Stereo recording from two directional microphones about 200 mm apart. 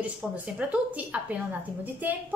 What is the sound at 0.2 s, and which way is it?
A woman's voice, centre (ahead or behind).